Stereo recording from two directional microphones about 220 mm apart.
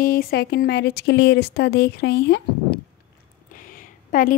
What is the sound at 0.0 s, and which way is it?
Speech, 45° left (ahead or behind).